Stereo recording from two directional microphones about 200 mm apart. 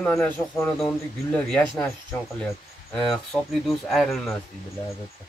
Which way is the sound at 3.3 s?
10° left (ahead or behind).